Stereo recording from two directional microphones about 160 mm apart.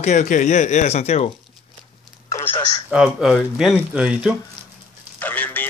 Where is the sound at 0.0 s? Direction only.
50° left (ahead or behind).